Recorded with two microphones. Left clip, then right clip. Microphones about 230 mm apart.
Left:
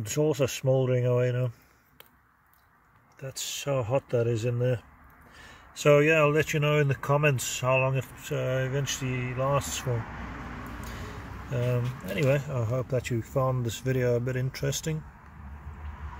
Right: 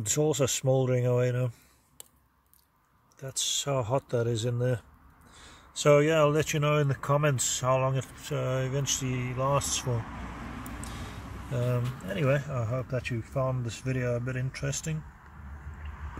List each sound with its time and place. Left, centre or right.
0.0 s speech: centre
3.2 s speech: centre
11.5 s speech: centre; by 15.0 s left